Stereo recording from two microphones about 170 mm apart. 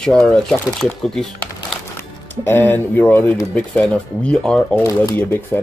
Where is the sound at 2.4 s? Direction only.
10° left (ahead or behind).